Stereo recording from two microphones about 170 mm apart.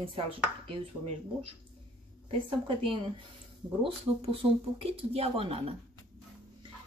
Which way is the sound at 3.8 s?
35° right (ahead or behind).